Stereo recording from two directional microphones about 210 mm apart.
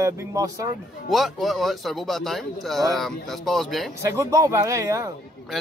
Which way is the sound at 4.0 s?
15° right (ahead or behind).